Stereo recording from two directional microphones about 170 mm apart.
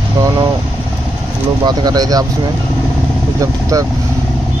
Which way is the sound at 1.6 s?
25° right (ahead or behind).